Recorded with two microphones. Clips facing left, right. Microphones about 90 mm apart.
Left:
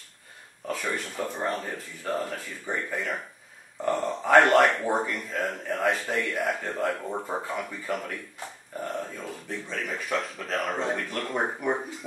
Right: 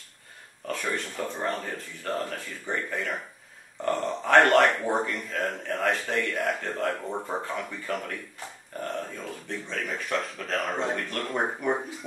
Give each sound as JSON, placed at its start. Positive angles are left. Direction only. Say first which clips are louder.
{"t": 0.9, "sound": "speech", "louder": "even", "side_deg": 5}